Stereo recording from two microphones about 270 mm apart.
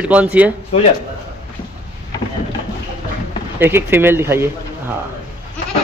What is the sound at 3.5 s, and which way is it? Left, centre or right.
Speech, centre.